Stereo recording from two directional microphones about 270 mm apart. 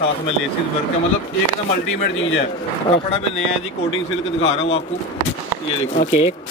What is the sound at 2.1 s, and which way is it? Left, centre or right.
Speech, left.